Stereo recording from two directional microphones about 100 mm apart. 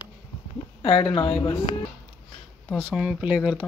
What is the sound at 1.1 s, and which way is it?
Speech, 55° left (ahead or behind).